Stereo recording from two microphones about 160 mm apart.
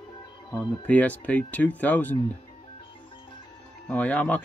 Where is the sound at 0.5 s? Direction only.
10° left (ahead or behind).